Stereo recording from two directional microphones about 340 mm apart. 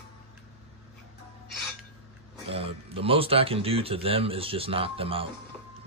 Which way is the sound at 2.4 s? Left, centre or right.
Centre.